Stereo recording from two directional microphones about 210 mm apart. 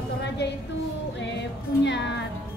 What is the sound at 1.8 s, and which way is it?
Speech, 55° left (ahead or behind).